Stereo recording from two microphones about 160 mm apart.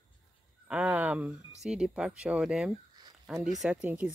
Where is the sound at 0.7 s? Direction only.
10° right (ahead or behind).